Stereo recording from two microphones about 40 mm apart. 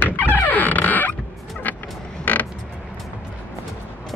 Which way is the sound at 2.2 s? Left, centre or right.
Left.